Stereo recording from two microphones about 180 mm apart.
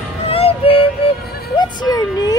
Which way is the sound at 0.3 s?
35° left (ahead or behind).